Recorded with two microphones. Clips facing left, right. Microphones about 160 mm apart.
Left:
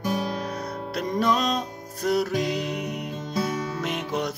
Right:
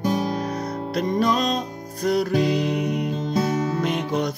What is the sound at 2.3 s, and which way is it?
Music, 35° right (ahead or behind).